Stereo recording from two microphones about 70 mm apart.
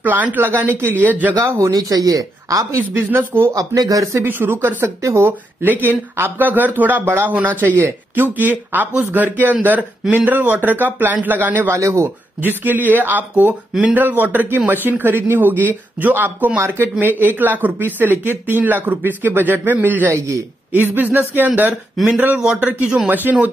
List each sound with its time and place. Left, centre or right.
0.0 s speech: right
1.3 s speech: right
1.7 s speech: right
2.9 s speech: right
3.5 s speech: right
4.2 s speech: right
4.8 s speech: right
11.7 s speech: right
12.4 s speech: right
22.0 s speech: centre
22.4 s speech: centre